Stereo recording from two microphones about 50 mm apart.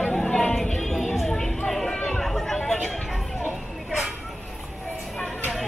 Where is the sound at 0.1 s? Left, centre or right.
Centre.